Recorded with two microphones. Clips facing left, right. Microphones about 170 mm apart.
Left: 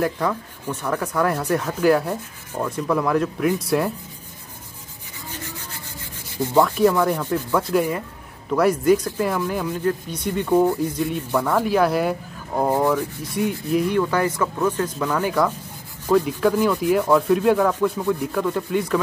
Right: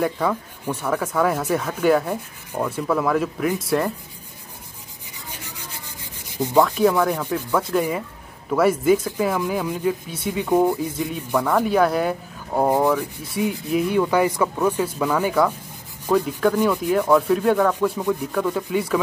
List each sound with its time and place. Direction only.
0.0 s speech: 5° right (ahead or behind)
5.3 s rub: 15° right (ahead or behind)
6.2 s sanding: 15° right (ahead or behind)
6.9 s speech: 10° right (ahead or behind)
7.7 s speech: 5° left (ahead or behind); by 11.6 s 15° right (ahead or behind)
11.6 s speech: centre (ahead or behind)
12.5 s speech: 15° right (ahead or behind)